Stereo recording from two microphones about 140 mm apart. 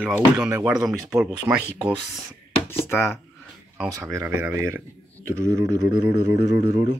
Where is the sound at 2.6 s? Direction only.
15° left (ahead or behind).